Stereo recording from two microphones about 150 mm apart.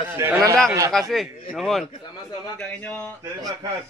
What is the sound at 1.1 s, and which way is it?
Speech, centre (ahead or behind).